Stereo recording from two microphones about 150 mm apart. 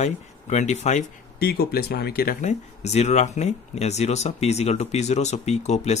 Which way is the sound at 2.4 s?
50° left (ahead or behind).